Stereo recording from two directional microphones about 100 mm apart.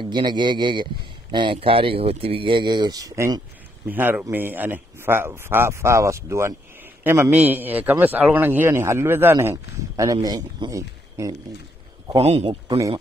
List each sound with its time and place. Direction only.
0.0 s a man's voice: 50° right (ahead or behind)
3.9 s a man's voice: 20° right (ahead or behind)
12.2 s speech: 90° right